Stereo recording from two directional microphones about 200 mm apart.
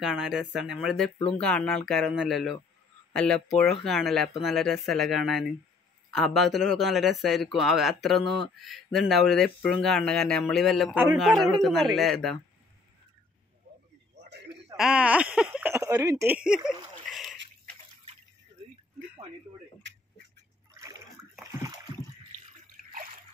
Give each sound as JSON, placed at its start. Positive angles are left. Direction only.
{"t": 0.0, "sound": "speech", "side_deg": 0}
{"t": 14.8, "sound": "speech", "side_deg": -5}
{"t": 19.8, "sound": "quack", "side_deg": -60}
{"t": 20.8, "sound": "water", "side_deg": -15}
{"t": 21.4, "sound": "splash", "side_deg": -10}